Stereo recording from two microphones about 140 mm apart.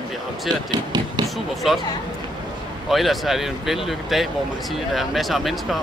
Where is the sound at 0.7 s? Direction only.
30° right (ahead or behind).